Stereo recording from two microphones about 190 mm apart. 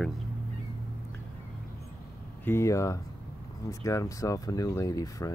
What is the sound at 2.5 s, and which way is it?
Speech, 15° left (ahead or behind).